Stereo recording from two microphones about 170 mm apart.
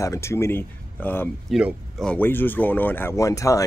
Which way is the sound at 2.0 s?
10° left (ahead or behind).